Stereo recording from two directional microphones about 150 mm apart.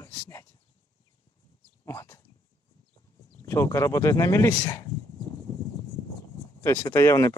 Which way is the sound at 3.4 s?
20° left (ahead or behind).